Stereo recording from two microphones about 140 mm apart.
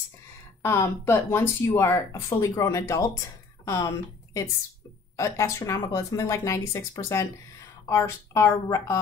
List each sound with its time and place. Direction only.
0.6 s a woman's voice: 20° left (ahead or behind)